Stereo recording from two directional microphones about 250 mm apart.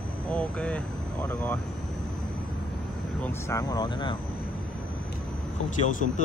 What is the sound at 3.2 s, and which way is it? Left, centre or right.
Speech, centre.